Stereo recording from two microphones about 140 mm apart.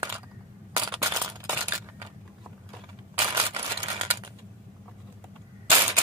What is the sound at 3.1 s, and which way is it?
Coin, 30° right (ahead or behind).